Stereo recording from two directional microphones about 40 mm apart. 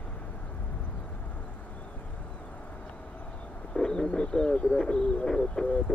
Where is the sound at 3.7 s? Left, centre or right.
Centre.